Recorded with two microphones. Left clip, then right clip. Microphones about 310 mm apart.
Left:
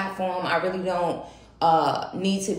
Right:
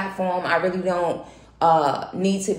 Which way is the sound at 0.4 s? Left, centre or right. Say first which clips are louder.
Right 3 dB; centre.